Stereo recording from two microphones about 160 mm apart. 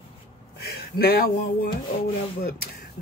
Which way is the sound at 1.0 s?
75° left (ahead or behind).